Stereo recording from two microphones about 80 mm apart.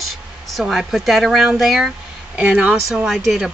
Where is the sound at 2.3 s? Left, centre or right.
Centre.